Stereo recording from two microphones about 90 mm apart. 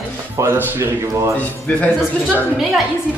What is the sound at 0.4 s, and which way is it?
Speech, 25° right (ahead or behind).